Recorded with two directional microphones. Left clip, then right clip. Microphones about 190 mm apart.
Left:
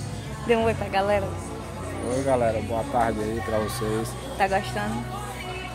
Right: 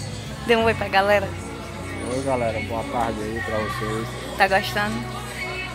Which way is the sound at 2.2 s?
20° left (ahead or behind).